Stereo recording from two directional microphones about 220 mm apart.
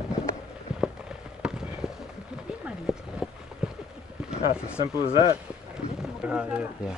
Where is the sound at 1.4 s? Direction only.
5° right (ahead or behind).